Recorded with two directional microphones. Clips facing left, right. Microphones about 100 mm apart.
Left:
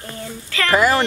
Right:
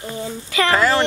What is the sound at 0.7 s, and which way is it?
Speech, 15° left (ahead or behind).